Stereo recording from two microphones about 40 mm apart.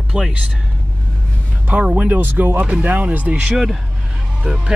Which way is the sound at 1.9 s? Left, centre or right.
Right.